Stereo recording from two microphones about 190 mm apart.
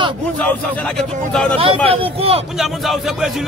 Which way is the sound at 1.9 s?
30° right (ahead or behind).